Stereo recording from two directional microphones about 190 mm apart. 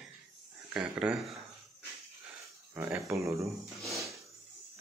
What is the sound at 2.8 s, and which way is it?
Speech, 10° right (ahead or behind).